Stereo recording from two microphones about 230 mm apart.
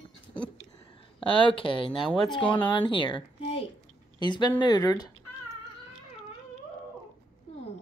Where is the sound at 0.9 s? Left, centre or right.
Left.